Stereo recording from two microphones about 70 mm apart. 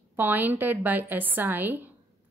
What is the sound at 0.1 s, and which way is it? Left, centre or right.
A woman's voice, right.